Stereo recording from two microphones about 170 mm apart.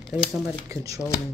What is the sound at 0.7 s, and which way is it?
Speech, 20° right (ahead or behind).